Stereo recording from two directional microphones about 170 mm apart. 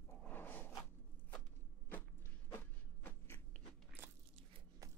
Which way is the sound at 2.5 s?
10° left (ahead or behind).